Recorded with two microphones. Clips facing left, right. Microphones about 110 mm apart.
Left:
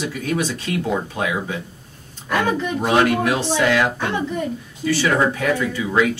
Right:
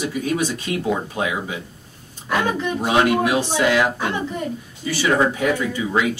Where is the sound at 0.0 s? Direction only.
15° right (ahead or behind).